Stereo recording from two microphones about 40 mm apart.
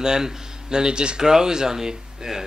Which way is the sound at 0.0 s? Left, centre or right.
Centre.